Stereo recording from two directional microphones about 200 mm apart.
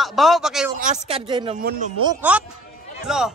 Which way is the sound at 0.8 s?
35° right (ahead or behind).